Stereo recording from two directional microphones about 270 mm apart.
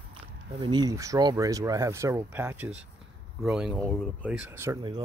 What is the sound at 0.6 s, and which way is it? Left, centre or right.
Speech, centre.